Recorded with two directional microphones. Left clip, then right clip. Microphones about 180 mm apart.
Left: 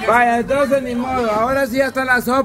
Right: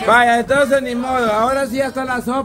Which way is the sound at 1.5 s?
5° left (ahead or behind).